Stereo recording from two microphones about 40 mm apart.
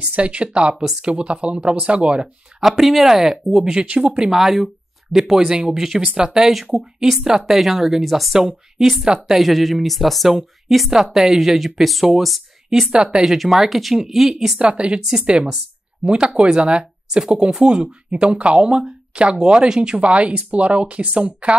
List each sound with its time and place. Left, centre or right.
0.0 s speech: right
2.8 s speech: centre
3.7 s speech: right
4.3 s speech: centre
6.0 s speech: right; by 8.3 s centre
8.3 s speech: centre
8.7 s speech: centre
12.6 s speech: right
13.2 s speech: centre
14.6 s speech: right
16.0 s speech: right